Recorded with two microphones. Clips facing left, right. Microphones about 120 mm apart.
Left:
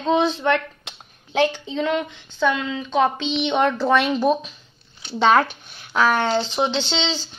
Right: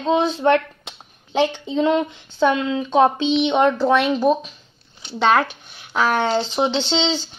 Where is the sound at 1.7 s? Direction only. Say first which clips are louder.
Right 4 dB; 20° right (ahead or behind).